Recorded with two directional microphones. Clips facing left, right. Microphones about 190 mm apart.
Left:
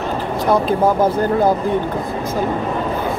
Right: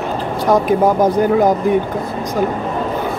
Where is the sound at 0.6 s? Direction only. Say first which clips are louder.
Right 2 dB; 15° right (ahead or behind).